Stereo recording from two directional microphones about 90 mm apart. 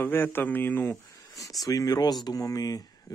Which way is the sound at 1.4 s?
40° left (ahead or behind).